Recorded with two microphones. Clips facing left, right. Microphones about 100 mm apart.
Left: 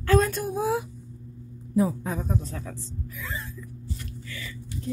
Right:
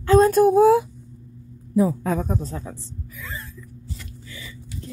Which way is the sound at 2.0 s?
90° right.